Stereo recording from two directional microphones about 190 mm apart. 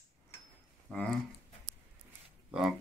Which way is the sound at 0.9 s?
5° left (ahead or behind).